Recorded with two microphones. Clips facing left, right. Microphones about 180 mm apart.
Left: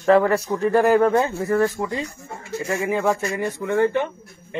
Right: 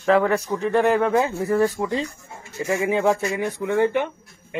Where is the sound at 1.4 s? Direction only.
15° right (ahead or behind).